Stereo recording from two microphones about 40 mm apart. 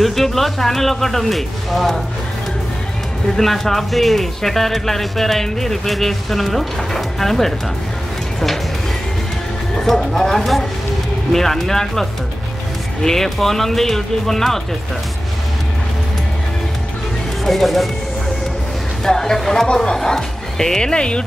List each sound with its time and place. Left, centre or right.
0.0 s speech: centre
3.3 s speech: centre
9.8 s speech: centre
17.5 s speech: centre
19.0 s speech: centre
20.9 s speech: left